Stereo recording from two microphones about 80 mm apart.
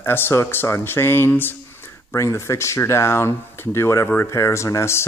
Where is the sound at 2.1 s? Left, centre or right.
Left.